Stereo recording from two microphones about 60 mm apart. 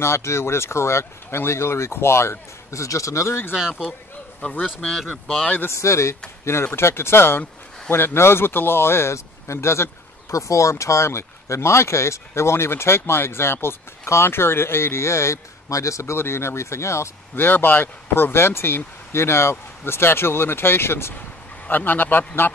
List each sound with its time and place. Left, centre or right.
0.0 s speech: left
3.5 s speech: centre
4.4 s speech: left
5.7 s speech: left
10.3 s speech: left
17.4 s speech: left
21.6 s speech: left